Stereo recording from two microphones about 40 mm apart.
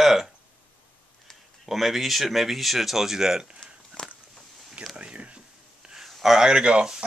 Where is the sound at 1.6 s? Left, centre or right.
Centre.